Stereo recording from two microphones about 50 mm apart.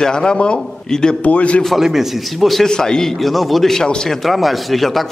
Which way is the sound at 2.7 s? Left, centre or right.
Centre.